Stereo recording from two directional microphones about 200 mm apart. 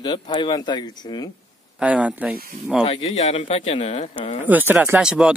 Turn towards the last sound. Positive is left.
turn(degrees=-5)  # may be behind; listen again after turning